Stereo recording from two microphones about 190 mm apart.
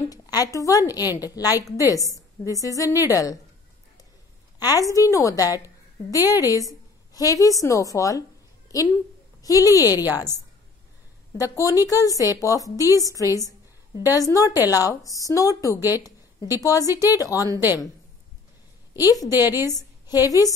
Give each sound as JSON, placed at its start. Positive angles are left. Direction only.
{"t": 0.1, "sound": "a woman's voice", "side_deg": 20}
{"t": 4.6, "sound": "a woman's voice", "side_deg": 20}
{"t": 9.4, "sound": "a woman's voice", "side_deg": 20}
{"t": 11.3, "sound": "a woman's voice", "side_deg": 15}
{"t": 15.9, "sound": "a sound", "side_deg": 20}
{"t": 16.6, "sound": "a woman's voice", "side_deg": 20}
{"t": 17.5, "sound": "a woman's voice", "side_deg": -10}
{"t": 19.0, "sound": "a woman's voice", "side_deg": 20}